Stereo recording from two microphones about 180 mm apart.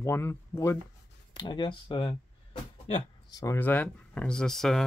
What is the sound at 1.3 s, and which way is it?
Speech, 25° left (ahead or behind).